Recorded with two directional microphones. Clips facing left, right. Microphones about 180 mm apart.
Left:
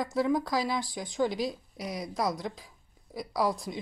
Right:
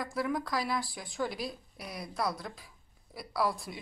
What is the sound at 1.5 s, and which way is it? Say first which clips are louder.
Speech: left 6 dB; 20° left (ahead or behind).